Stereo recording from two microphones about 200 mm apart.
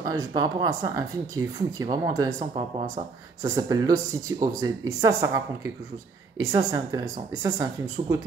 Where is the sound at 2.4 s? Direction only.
30° right (ahead or behind).